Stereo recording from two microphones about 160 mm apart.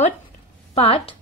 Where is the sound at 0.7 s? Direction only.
35° left (ahead or behind).